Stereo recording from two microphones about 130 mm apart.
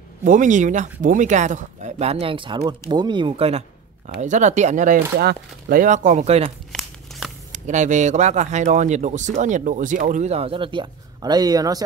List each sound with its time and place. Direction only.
0.2 s speech: 80° right; by 3.6 s 50° right (ahead or behind)
4.2 s speech: 65° right (ahead or behind)
5.7 s speech: 80° right; by 6.5 s 55° right (ahead or behind)
6.7 s crumpling: centre (ahead or behind)
7.5 s speech: 70° right (ahead or behind)
9.4 s speech: 75° right (ahead or behind); by 11.8 s 30° right (ahead or behind)